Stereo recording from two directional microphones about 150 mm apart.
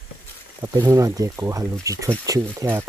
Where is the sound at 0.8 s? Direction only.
25° right (ahead or behind).